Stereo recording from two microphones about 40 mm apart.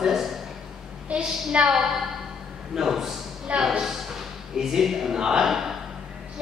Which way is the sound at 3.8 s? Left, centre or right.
Centre.